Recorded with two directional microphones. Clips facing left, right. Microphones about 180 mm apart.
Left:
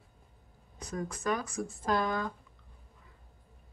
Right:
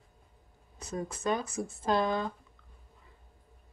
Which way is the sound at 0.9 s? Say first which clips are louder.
Right 1 dB; 25° right (ahead or behind).